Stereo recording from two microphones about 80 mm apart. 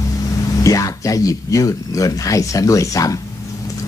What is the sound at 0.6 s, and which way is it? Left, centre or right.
Speech, left.